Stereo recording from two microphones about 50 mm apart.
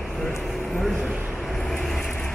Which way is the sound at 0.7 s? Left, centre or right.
Centre.